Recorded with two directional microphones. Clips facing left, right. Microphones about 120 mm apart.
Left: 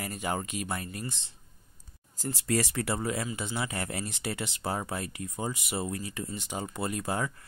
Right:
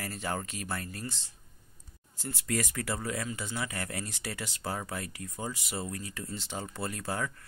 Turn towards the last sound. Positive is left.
turn(degrees=20)  # may be behind; listen again after turning